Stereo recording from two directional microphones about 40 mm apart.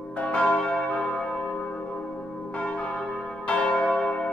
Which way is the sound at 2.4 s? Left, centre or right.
Left.